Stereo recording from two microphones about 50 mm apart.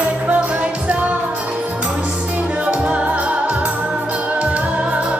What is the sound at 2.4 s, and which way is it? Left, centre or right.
Music, right.